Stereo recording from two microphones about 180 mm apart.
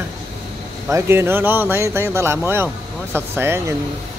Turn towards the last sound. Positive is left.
turn(degrees=-15)  # may be behind; listen again after turning